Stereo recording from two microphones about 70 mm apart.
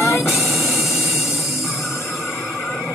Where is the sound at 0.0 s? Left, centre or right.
Left.